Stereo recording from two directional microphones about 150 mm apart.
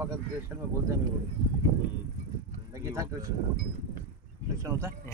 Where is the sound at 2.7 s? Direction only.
20° right (ahead or behind).